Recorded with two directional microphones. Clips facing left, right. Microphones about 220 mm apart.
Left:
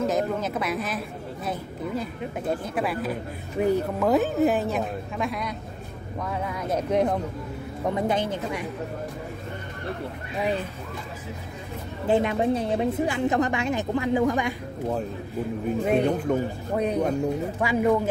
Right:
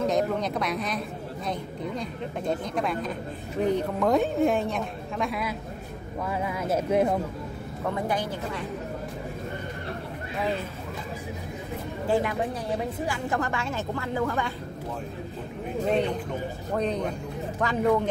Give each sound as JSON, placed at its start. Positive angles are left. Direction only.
{"t": 0.0, "sound": "speech", "side_deg": 5}
{"t": 7.9, "sound": "a woman's voice", "side_deg": 20}
{"t": 12.1, "sound": "a woman's voice", "side_deg": 25}
{"t": 15.8, "sound": "a woman's voice", "side_deg": 10}
{"t": 16.3, "sound": "speech", "side_deg": 50}
{"t": 16.7, "sound": "a woman's voice", "side_deg": 10}